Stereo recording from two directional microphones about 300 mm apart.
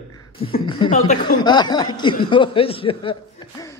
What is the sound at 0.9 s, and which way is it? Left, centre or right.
A woman's voice, left.